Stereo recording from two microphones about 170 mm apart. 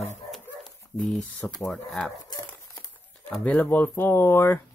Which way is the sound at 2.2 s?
20° left (ahead or behind).